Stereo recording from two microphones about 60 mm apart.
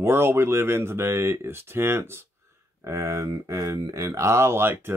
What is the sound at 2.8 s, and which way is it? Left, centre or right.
Speech, right.